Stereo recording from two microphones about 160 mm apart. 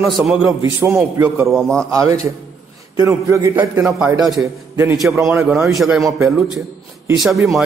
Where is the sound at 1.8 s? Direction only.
20° right (ahead or behind).